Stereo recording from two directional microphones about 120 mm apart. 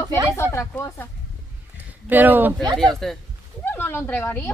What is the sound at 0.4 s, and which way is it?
Speech, 20° left (ahead or behind).